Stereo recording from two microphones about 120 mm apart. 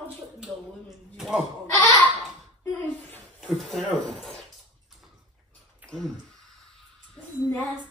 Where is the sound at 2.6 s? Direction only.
15° left (ahead or behind).